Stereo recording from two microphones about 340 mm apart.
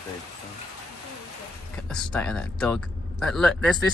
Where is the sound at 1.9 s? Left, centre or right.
Centre.